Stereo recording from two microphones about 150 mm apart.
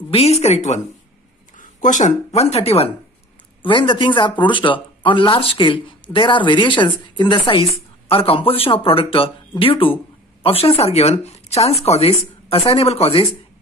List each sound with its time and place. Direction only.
0.1 s speech: 45° left (ahead or behind)